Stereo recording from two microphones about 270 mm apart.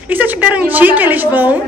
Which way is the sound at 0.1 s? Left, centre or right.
Centre.